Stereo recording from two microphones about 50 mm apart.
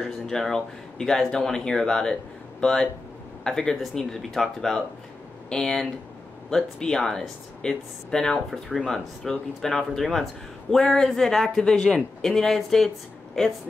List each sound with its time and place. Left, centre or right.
0.0 s speech: centre